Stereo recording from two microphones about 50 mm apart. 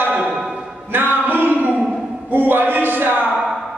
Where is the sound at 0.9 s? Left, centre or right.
Right.